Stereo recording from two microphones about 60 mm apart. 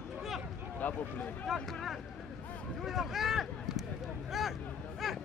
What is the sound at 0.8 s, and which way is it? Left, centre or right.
Speech, left.